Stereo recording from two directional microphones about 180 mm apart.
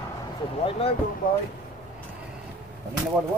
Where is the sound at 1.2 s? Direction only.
50° left (ahead or behind).